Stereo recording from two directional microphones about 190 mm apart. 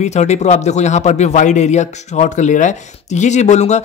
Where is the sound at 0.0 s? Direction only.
35° left (ahead or behind).